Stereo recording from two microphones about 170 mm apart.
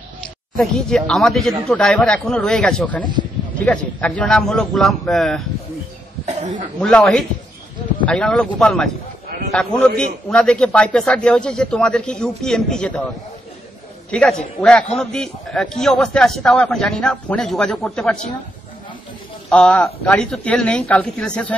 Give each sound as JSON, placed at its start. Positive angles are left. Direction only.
{"t": 0.6, "sound": "a man's voice", "side_deg": 0}
{"t": 6.2, "sound": "cough", "side_deg": -45}
{"t": 6.8, "sound": "a man's voice", "side_deg": 5}
{"t": 14.1, "sound": "a man's voice", "side_deg": 5}
{"t": 19.5, "sound": "a man's voice", "side_deg": 5}